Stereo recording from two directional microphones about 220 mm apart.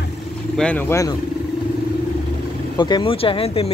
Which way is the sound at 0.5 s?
5° left (ahead or behind).